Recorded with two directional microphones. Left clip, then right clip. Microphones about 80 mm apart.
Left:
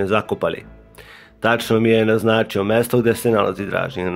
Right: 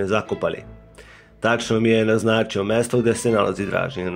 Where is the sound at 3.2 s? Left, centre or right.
Centre.